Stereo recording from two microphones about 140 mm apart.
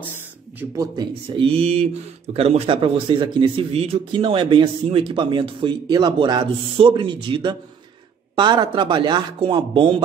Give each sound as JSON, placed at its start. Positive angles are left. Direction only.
{"t": 0.6, "sound": "speech", "side_deg": -15}
{"t": 1.3, "sound": "mantra", "side_deg": -40}
{"t": 2.3, "sound": "speech", "side_deg": -45}